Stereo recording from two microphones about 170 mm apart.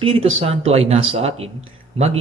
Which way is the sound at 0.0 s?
30° right (ahead or behind).